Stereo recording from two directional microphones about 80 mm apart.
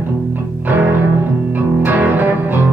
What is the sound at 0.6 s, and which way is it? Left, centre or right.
Music, right.